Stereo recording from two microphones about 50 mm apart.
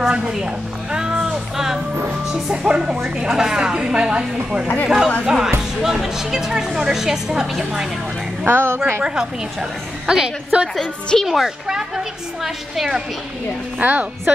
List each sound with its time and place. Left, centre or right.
1.2 s music: centre
2.3 s a woman's voice: centre
8.5 s a woman's voice: right
9.0 s a woman's voice: centre
10.8 s speech: centre
11.2 s a woman's voice: centre
13.7 s a woman's voice: right